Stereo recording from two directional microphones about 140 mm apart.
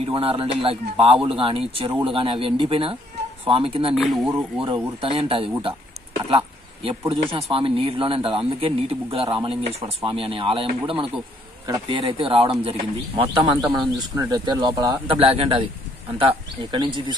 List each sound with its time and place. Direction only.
0.0 s a man's voice: 45° right (ahead or behind)
3.9 s speech: centre (ahead or behind)
4.6 s a man's voice: 40° right (ahead or behind)
6.2 s a sound: 40° right (ahead or behind)
7.1 s a man's voice: 40° right (ahead or behind)